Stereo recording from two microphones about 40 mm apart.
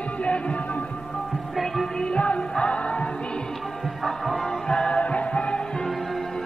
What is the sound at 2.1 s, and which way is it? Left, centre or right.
Music, left.